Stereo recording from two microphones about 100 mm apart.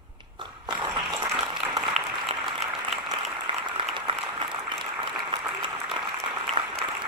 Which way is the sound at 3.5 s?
55° right (ahead or behind).